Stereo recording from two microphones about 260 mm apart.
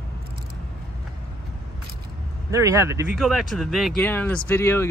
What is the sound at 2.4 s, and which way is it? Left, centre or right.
Speech, centre.